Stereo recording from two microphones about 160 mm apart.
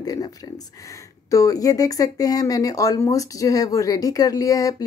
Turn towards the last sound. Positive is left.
turn(degrees=20)  # may be behind; listen again after turning